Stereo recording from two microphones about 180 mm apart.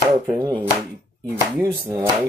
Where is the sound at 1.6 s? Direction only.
10° right (ahead or behind).